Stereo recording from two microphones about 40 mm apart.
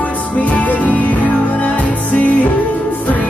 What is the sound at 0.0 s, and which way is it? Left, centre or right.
Music, left.